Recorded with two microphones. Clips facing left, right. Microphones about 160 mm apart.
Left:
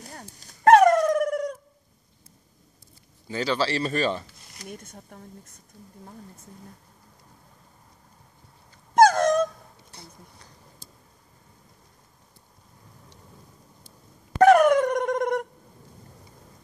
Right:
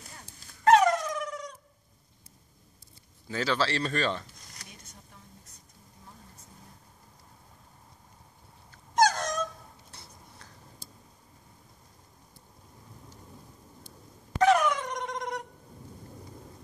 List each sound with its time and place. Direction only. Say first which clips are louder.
0.0 s dog: left 8 dB; 40° left (ahead or behind)
3.3 s speech: left 3 dB; centre (ahead or behind)
4.6 s speech: left 12 dB; 50° left (ahead or behind)
8.9 s dog: left 8 dB; 55° left (ahead or behind)
14.4 s dog: left 8 dB; 55° left (ahead or behind)